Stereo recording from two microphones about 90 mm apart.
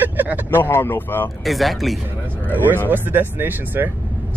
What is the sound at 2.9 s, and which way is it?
Speech, 20° right (ahead or behind).